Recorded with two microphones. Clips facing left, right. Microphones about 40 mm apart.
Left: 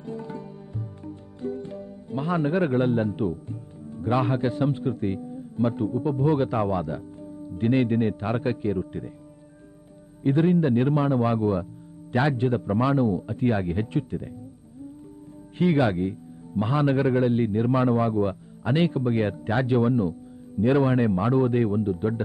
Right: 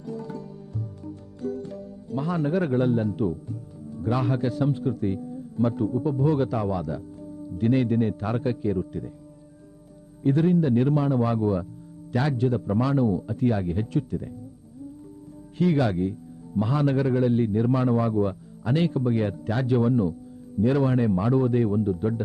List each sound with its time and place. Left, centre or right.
0.0 s music: left
7.5 s a man's voice: left
10.2 s a man's voice: left
15.5 s a man's voice: left